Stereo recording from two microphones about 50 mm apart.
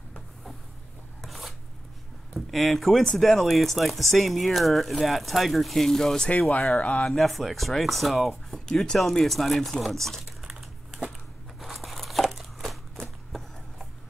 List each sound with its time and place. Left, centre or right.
1.2 s chopping: centre
2.5 s speech: centre
6.8 s speech: left
7.1 s speech: centre
8.6 s speech: centre
10.6 s crumpling: centre
11.6 s crumpling: centre
12.9 s a sound: centre